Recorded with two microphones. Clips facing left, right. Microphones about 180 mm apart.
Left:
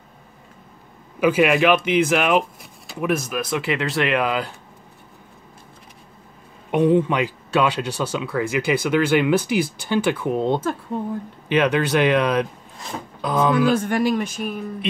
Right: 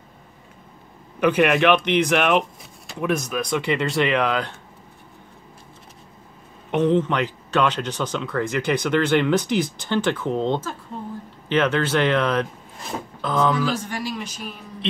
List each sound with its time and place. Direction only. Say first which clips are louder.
1.2 s speech: left 1 dB; 5° left (ahead or behind)
6.7 s speech: left 2 dB; 10° left (ahead or behind)
13.7 s speech: left 9 dB; 55° left (ahead or behind)